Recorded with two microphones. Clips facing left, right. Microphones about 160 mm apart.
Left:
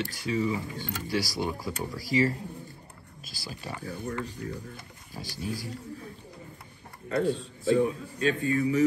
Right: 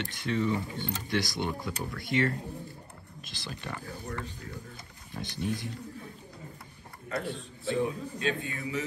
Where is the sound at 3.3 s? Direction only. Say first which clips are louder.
Even; 5° left (ahead or behind).